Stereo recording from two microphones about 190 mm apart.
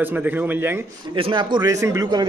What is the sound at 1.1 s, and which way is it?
Speech, 25° right (ahead or behind).